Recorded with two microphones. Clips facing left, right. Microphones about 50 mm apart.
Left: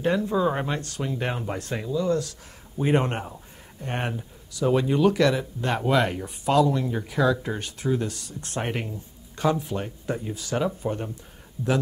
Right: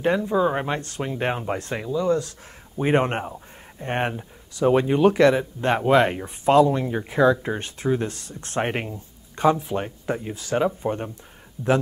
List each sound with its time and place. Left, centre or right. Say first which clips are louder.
0.2 s speech: right 2 dB; centre
0.7 s speech: right 2 dB; right